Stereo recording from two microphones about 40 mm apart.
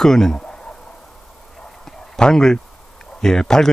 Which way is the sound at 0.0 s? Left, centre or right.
Centre.